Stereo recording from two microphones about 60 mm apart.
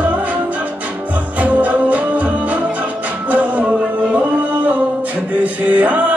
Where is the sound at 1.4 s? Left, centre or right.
Right.